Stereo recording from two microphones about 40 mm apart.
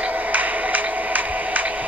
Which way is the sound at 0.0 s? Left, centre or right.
Right.